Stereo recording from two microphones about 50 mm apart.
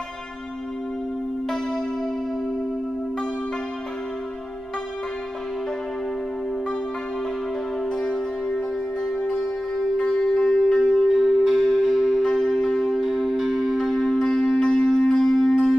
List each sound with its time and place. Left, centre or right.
8.1 s music: centre
11.1 s music: centre
12.2 s music: centre
13.7 s music: centre